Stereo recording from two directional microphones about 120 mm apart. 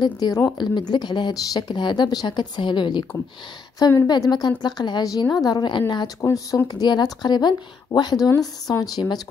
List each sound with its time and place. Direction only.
0.0 s speech: 30° left (ahead or behind)
6.2 s speech: 30° left (ahead or behind)